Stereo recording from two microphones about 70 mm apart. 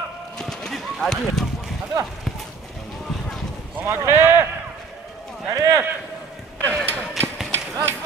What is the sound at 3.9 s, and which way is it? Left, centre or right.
Speech, right.